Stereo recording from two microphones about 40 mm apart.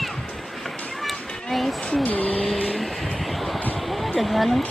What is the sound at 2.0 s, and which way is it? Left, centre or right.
Vehicle, left.